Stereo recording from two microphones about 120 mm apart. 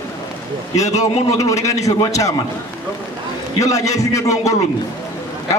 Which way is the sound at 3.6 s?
25° left (ahead or behind).